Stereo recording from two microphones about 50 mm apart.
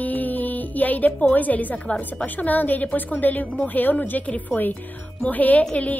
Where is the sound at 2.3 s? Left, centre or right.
Left.